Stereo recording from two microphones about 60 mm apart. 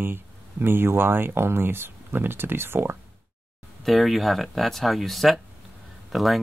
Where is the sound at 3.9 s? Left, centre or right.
Centre.